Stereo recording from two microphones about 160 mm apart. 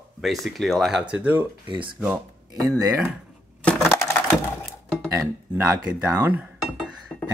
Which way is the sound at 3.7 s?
15° left (ahead or behind).